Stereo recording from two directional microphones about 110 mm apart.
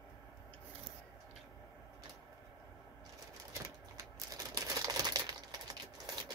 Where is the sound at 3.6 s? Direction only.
30° right (ahead or behind).